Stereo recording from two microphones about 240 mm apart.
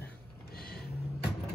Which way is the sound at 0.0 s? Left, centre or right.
Left.